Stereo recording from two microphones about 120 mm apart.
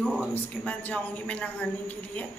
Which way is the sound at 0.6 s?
10° left (ahead or behind).